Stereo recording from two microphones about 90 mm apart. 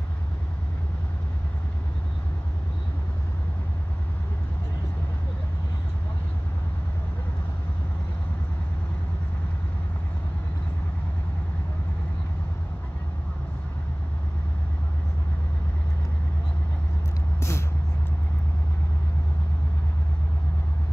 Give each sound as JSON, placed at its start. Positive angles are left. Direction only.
{"t": 17.4, "sound": "vehicle", "side_deg": 30}